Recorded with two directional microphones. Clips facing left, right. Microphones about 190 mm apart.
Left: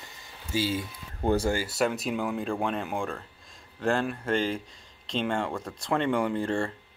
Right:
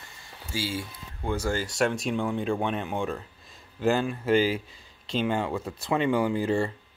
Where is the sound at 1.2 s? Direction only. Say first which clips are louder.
Left 5 dB; 40° left (ahead or behind).